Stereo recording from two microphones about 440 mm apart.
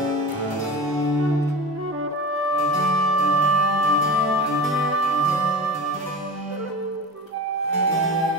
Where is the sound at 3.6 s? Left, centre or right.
Left.